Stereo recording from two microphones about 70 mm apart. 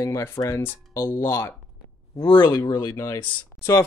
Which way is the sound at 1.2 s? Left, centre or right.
Left.